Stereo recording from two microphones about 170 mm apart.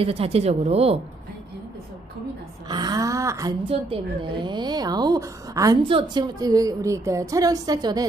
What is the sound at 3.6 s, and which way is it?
A woman's voice, 35° right (ahead or behind).